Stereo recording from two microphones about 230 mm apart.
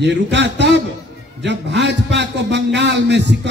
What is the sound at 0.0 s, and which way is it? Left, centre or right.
A man's voice, right.